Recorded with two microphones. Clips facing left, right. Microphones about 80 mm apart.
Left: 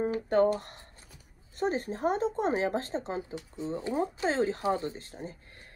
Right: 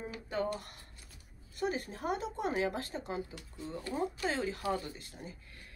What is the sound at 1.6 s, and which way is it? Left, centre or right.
Speech, left.